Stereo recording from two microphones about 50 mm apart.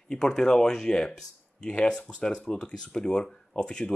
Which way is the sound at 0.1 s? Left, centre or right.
Centre.